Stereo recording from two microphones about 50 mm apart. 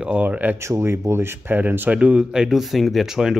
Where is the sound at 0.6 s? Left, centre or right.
Right.